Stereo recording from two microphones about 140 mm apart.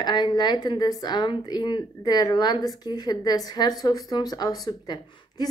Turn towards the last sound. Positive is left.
turn(degrees=30)  # may be behind; listen again after turning